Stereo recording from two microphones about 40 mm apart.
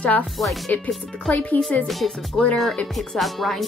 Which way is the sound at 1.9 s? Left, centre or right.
Centre.